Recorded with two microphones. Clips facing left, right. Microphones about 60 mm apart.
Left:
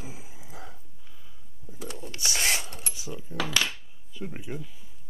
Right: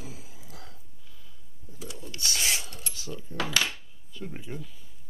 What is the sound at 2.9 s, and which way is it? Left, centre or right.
Keys jangling, centre.